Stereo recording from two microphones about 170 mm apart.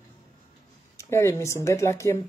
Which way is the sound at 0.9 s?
15° left (ahead or behind).